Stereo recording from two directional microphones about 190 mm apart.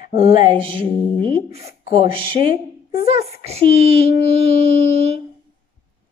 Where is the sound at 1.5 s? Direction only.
50° left (ahead or behind).